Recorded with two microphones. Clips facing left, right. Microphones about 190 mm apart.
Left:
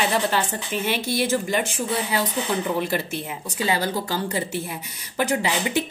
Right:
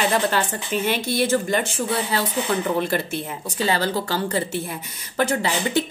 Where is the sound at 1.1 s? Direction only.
10° left (ahead or behind).